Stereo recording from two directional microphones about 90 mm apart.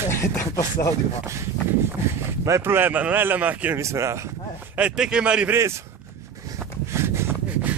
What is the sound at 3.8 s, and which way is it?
Speech, 30° right (ahead or behind).